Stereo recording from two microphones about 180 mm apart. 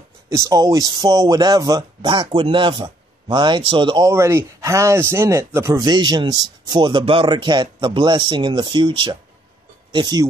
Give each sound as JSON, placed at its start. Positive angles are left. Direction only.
{"t": 0.3, "sound": "speech", "side_deg": -20}